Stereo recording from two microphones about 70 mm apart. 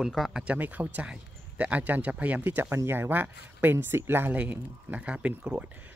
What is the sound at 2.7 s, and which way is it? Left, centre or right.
Speech, right.